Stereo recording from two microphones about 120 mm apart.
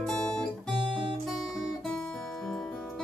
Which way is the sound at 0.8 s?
45° right (ahead or behind).